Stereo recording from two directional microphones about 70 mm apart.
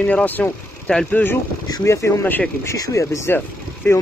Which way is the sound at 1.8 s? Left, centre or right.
Left.